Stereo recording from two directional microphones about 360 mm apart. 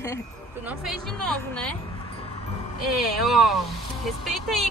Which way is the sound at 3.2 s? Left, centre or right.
Centre.